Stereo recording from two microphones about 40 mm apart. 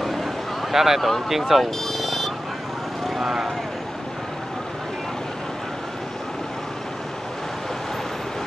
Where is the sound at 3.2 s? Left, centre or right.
Centre.